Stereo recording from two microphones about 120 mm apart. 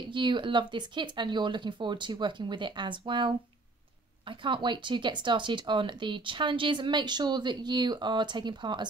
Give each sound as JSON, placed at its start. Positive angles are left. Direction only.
{"t": 0.1, "sound": "speech", "side_deg": -40}